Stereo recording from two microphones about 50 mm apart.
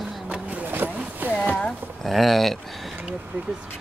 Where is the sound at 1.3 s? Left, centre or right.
Left.